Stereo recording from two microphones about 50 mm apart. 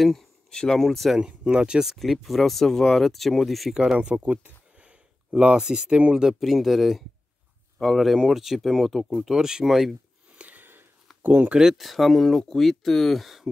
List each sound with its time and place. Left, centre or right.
0.0 s speech: centre
1.2 s speech: centre
2.0 s speech: centre
4.0 s speech: right
4.7 s a sound: right
5.9 s speech: right
6.4 s speech: centre
9.3 s speech: centre
10.3 s a sound: right
10.6 s a sound: right
11.2 s speech: right
11.5 s speech: centre